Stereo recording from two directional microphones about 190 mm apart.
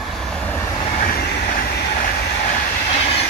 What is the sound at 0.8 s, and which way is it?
Train, 50° left (ahead or behind).